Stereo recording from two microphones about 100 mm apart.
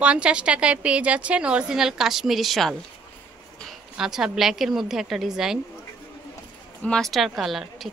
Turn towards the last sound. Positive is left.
turn(degrees=0)  # may be behind; listen again after turning